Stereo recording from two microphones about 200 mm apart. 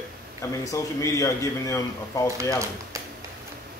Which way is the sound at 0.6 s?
15° left (ahead or behind).